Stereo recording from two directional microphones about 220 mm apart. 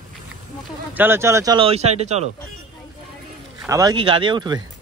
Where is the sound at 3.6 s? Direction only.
15° right (ahead or behind).